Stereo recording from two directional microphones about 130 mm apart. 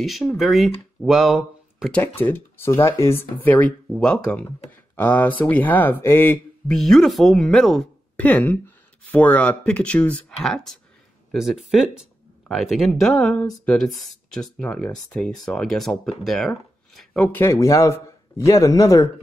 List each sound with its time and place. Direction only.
0.0 s speech: centre (ahead or behind)
1.9 s speech: 15° left (ahead or behind)
6.7 s speech: 5° left (ahead or behind); by 19.0 s 25° left (ahead or behind)